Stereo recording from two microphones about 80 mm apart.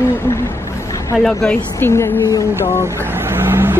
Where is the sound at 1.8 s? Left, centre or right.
Left.